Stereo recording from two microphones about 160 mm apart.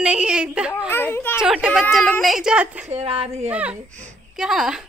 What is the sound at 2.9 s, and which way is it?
Speech, 40° right (ahead or behind).